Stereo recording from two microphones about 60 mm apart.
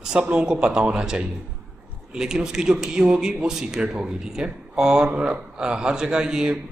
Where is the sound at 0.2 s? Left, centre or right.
Centre.